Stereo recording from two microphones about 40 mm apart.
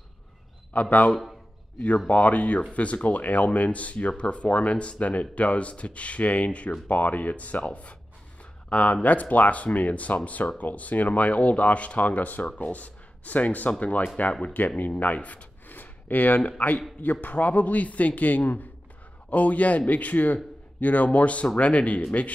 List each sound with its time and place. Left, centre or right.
0.7 s speech: left
14.6 s speech: left
15.1 s speech: left
15.7 s speech: left